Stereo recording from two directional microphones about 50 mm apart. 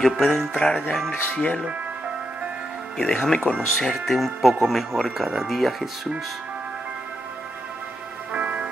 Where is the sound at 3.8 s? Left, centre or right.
Centre.